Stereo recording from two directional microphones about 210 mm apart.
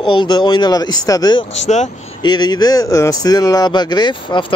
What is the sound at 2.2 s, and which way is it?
Speech, 20° left (ahead or behind).